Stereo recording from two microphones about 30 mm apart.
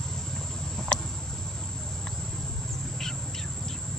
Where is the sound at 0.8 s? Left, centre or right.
Centre.